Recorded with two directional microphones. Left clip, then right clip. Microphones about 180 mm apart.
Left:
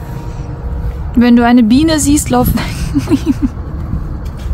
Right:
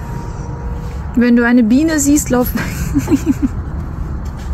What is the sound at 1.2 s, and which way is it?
Speech, 20° left (ahead or behind).